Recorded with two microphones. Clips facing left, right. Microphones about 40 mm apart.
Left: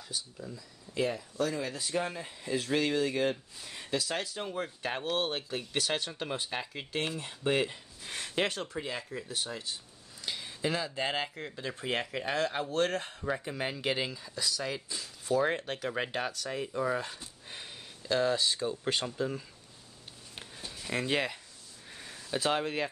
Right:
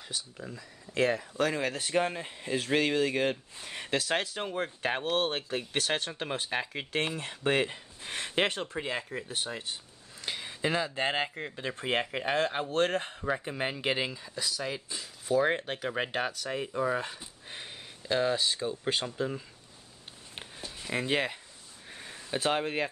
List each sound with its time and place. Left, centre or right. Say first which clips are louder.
0.4 s speech: right 1 dB; right
0.9 s speech: right 4 dB; right
1.4 s speech: right 2 dB; right
4.5 s speech: right 3 dB; right
5.1 s speech: right 3 dB; right
6.0 s speech: right 2 dB; right
7.2 s speech: even; right
7.7 s speech: right 3 dB; right
10.2 s speech: right 2 dB; right
20.8 s speech: right 1 dB; centre
21.8 s a sound: right 2 dB; centre
22.2 s speech: right 1 dB; centre